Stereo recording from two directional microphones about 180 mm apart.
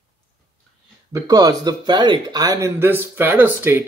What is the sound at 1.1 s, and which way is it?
Speech, 20° right (ahead or behind).